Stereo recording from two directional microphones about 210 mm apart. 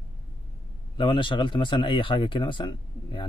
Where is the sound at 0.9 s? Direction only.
25° left (ahead or behind).